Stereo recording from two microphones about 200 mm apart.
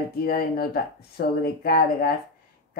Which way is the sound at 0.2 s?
50° left (ahead or behind).